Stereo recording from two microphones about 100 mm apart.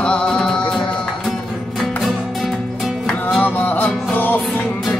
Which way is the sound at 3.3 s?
15° left (ahead or behind).